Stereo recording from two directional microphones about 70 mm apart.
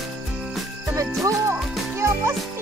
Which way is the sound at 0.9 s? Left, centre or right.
Right.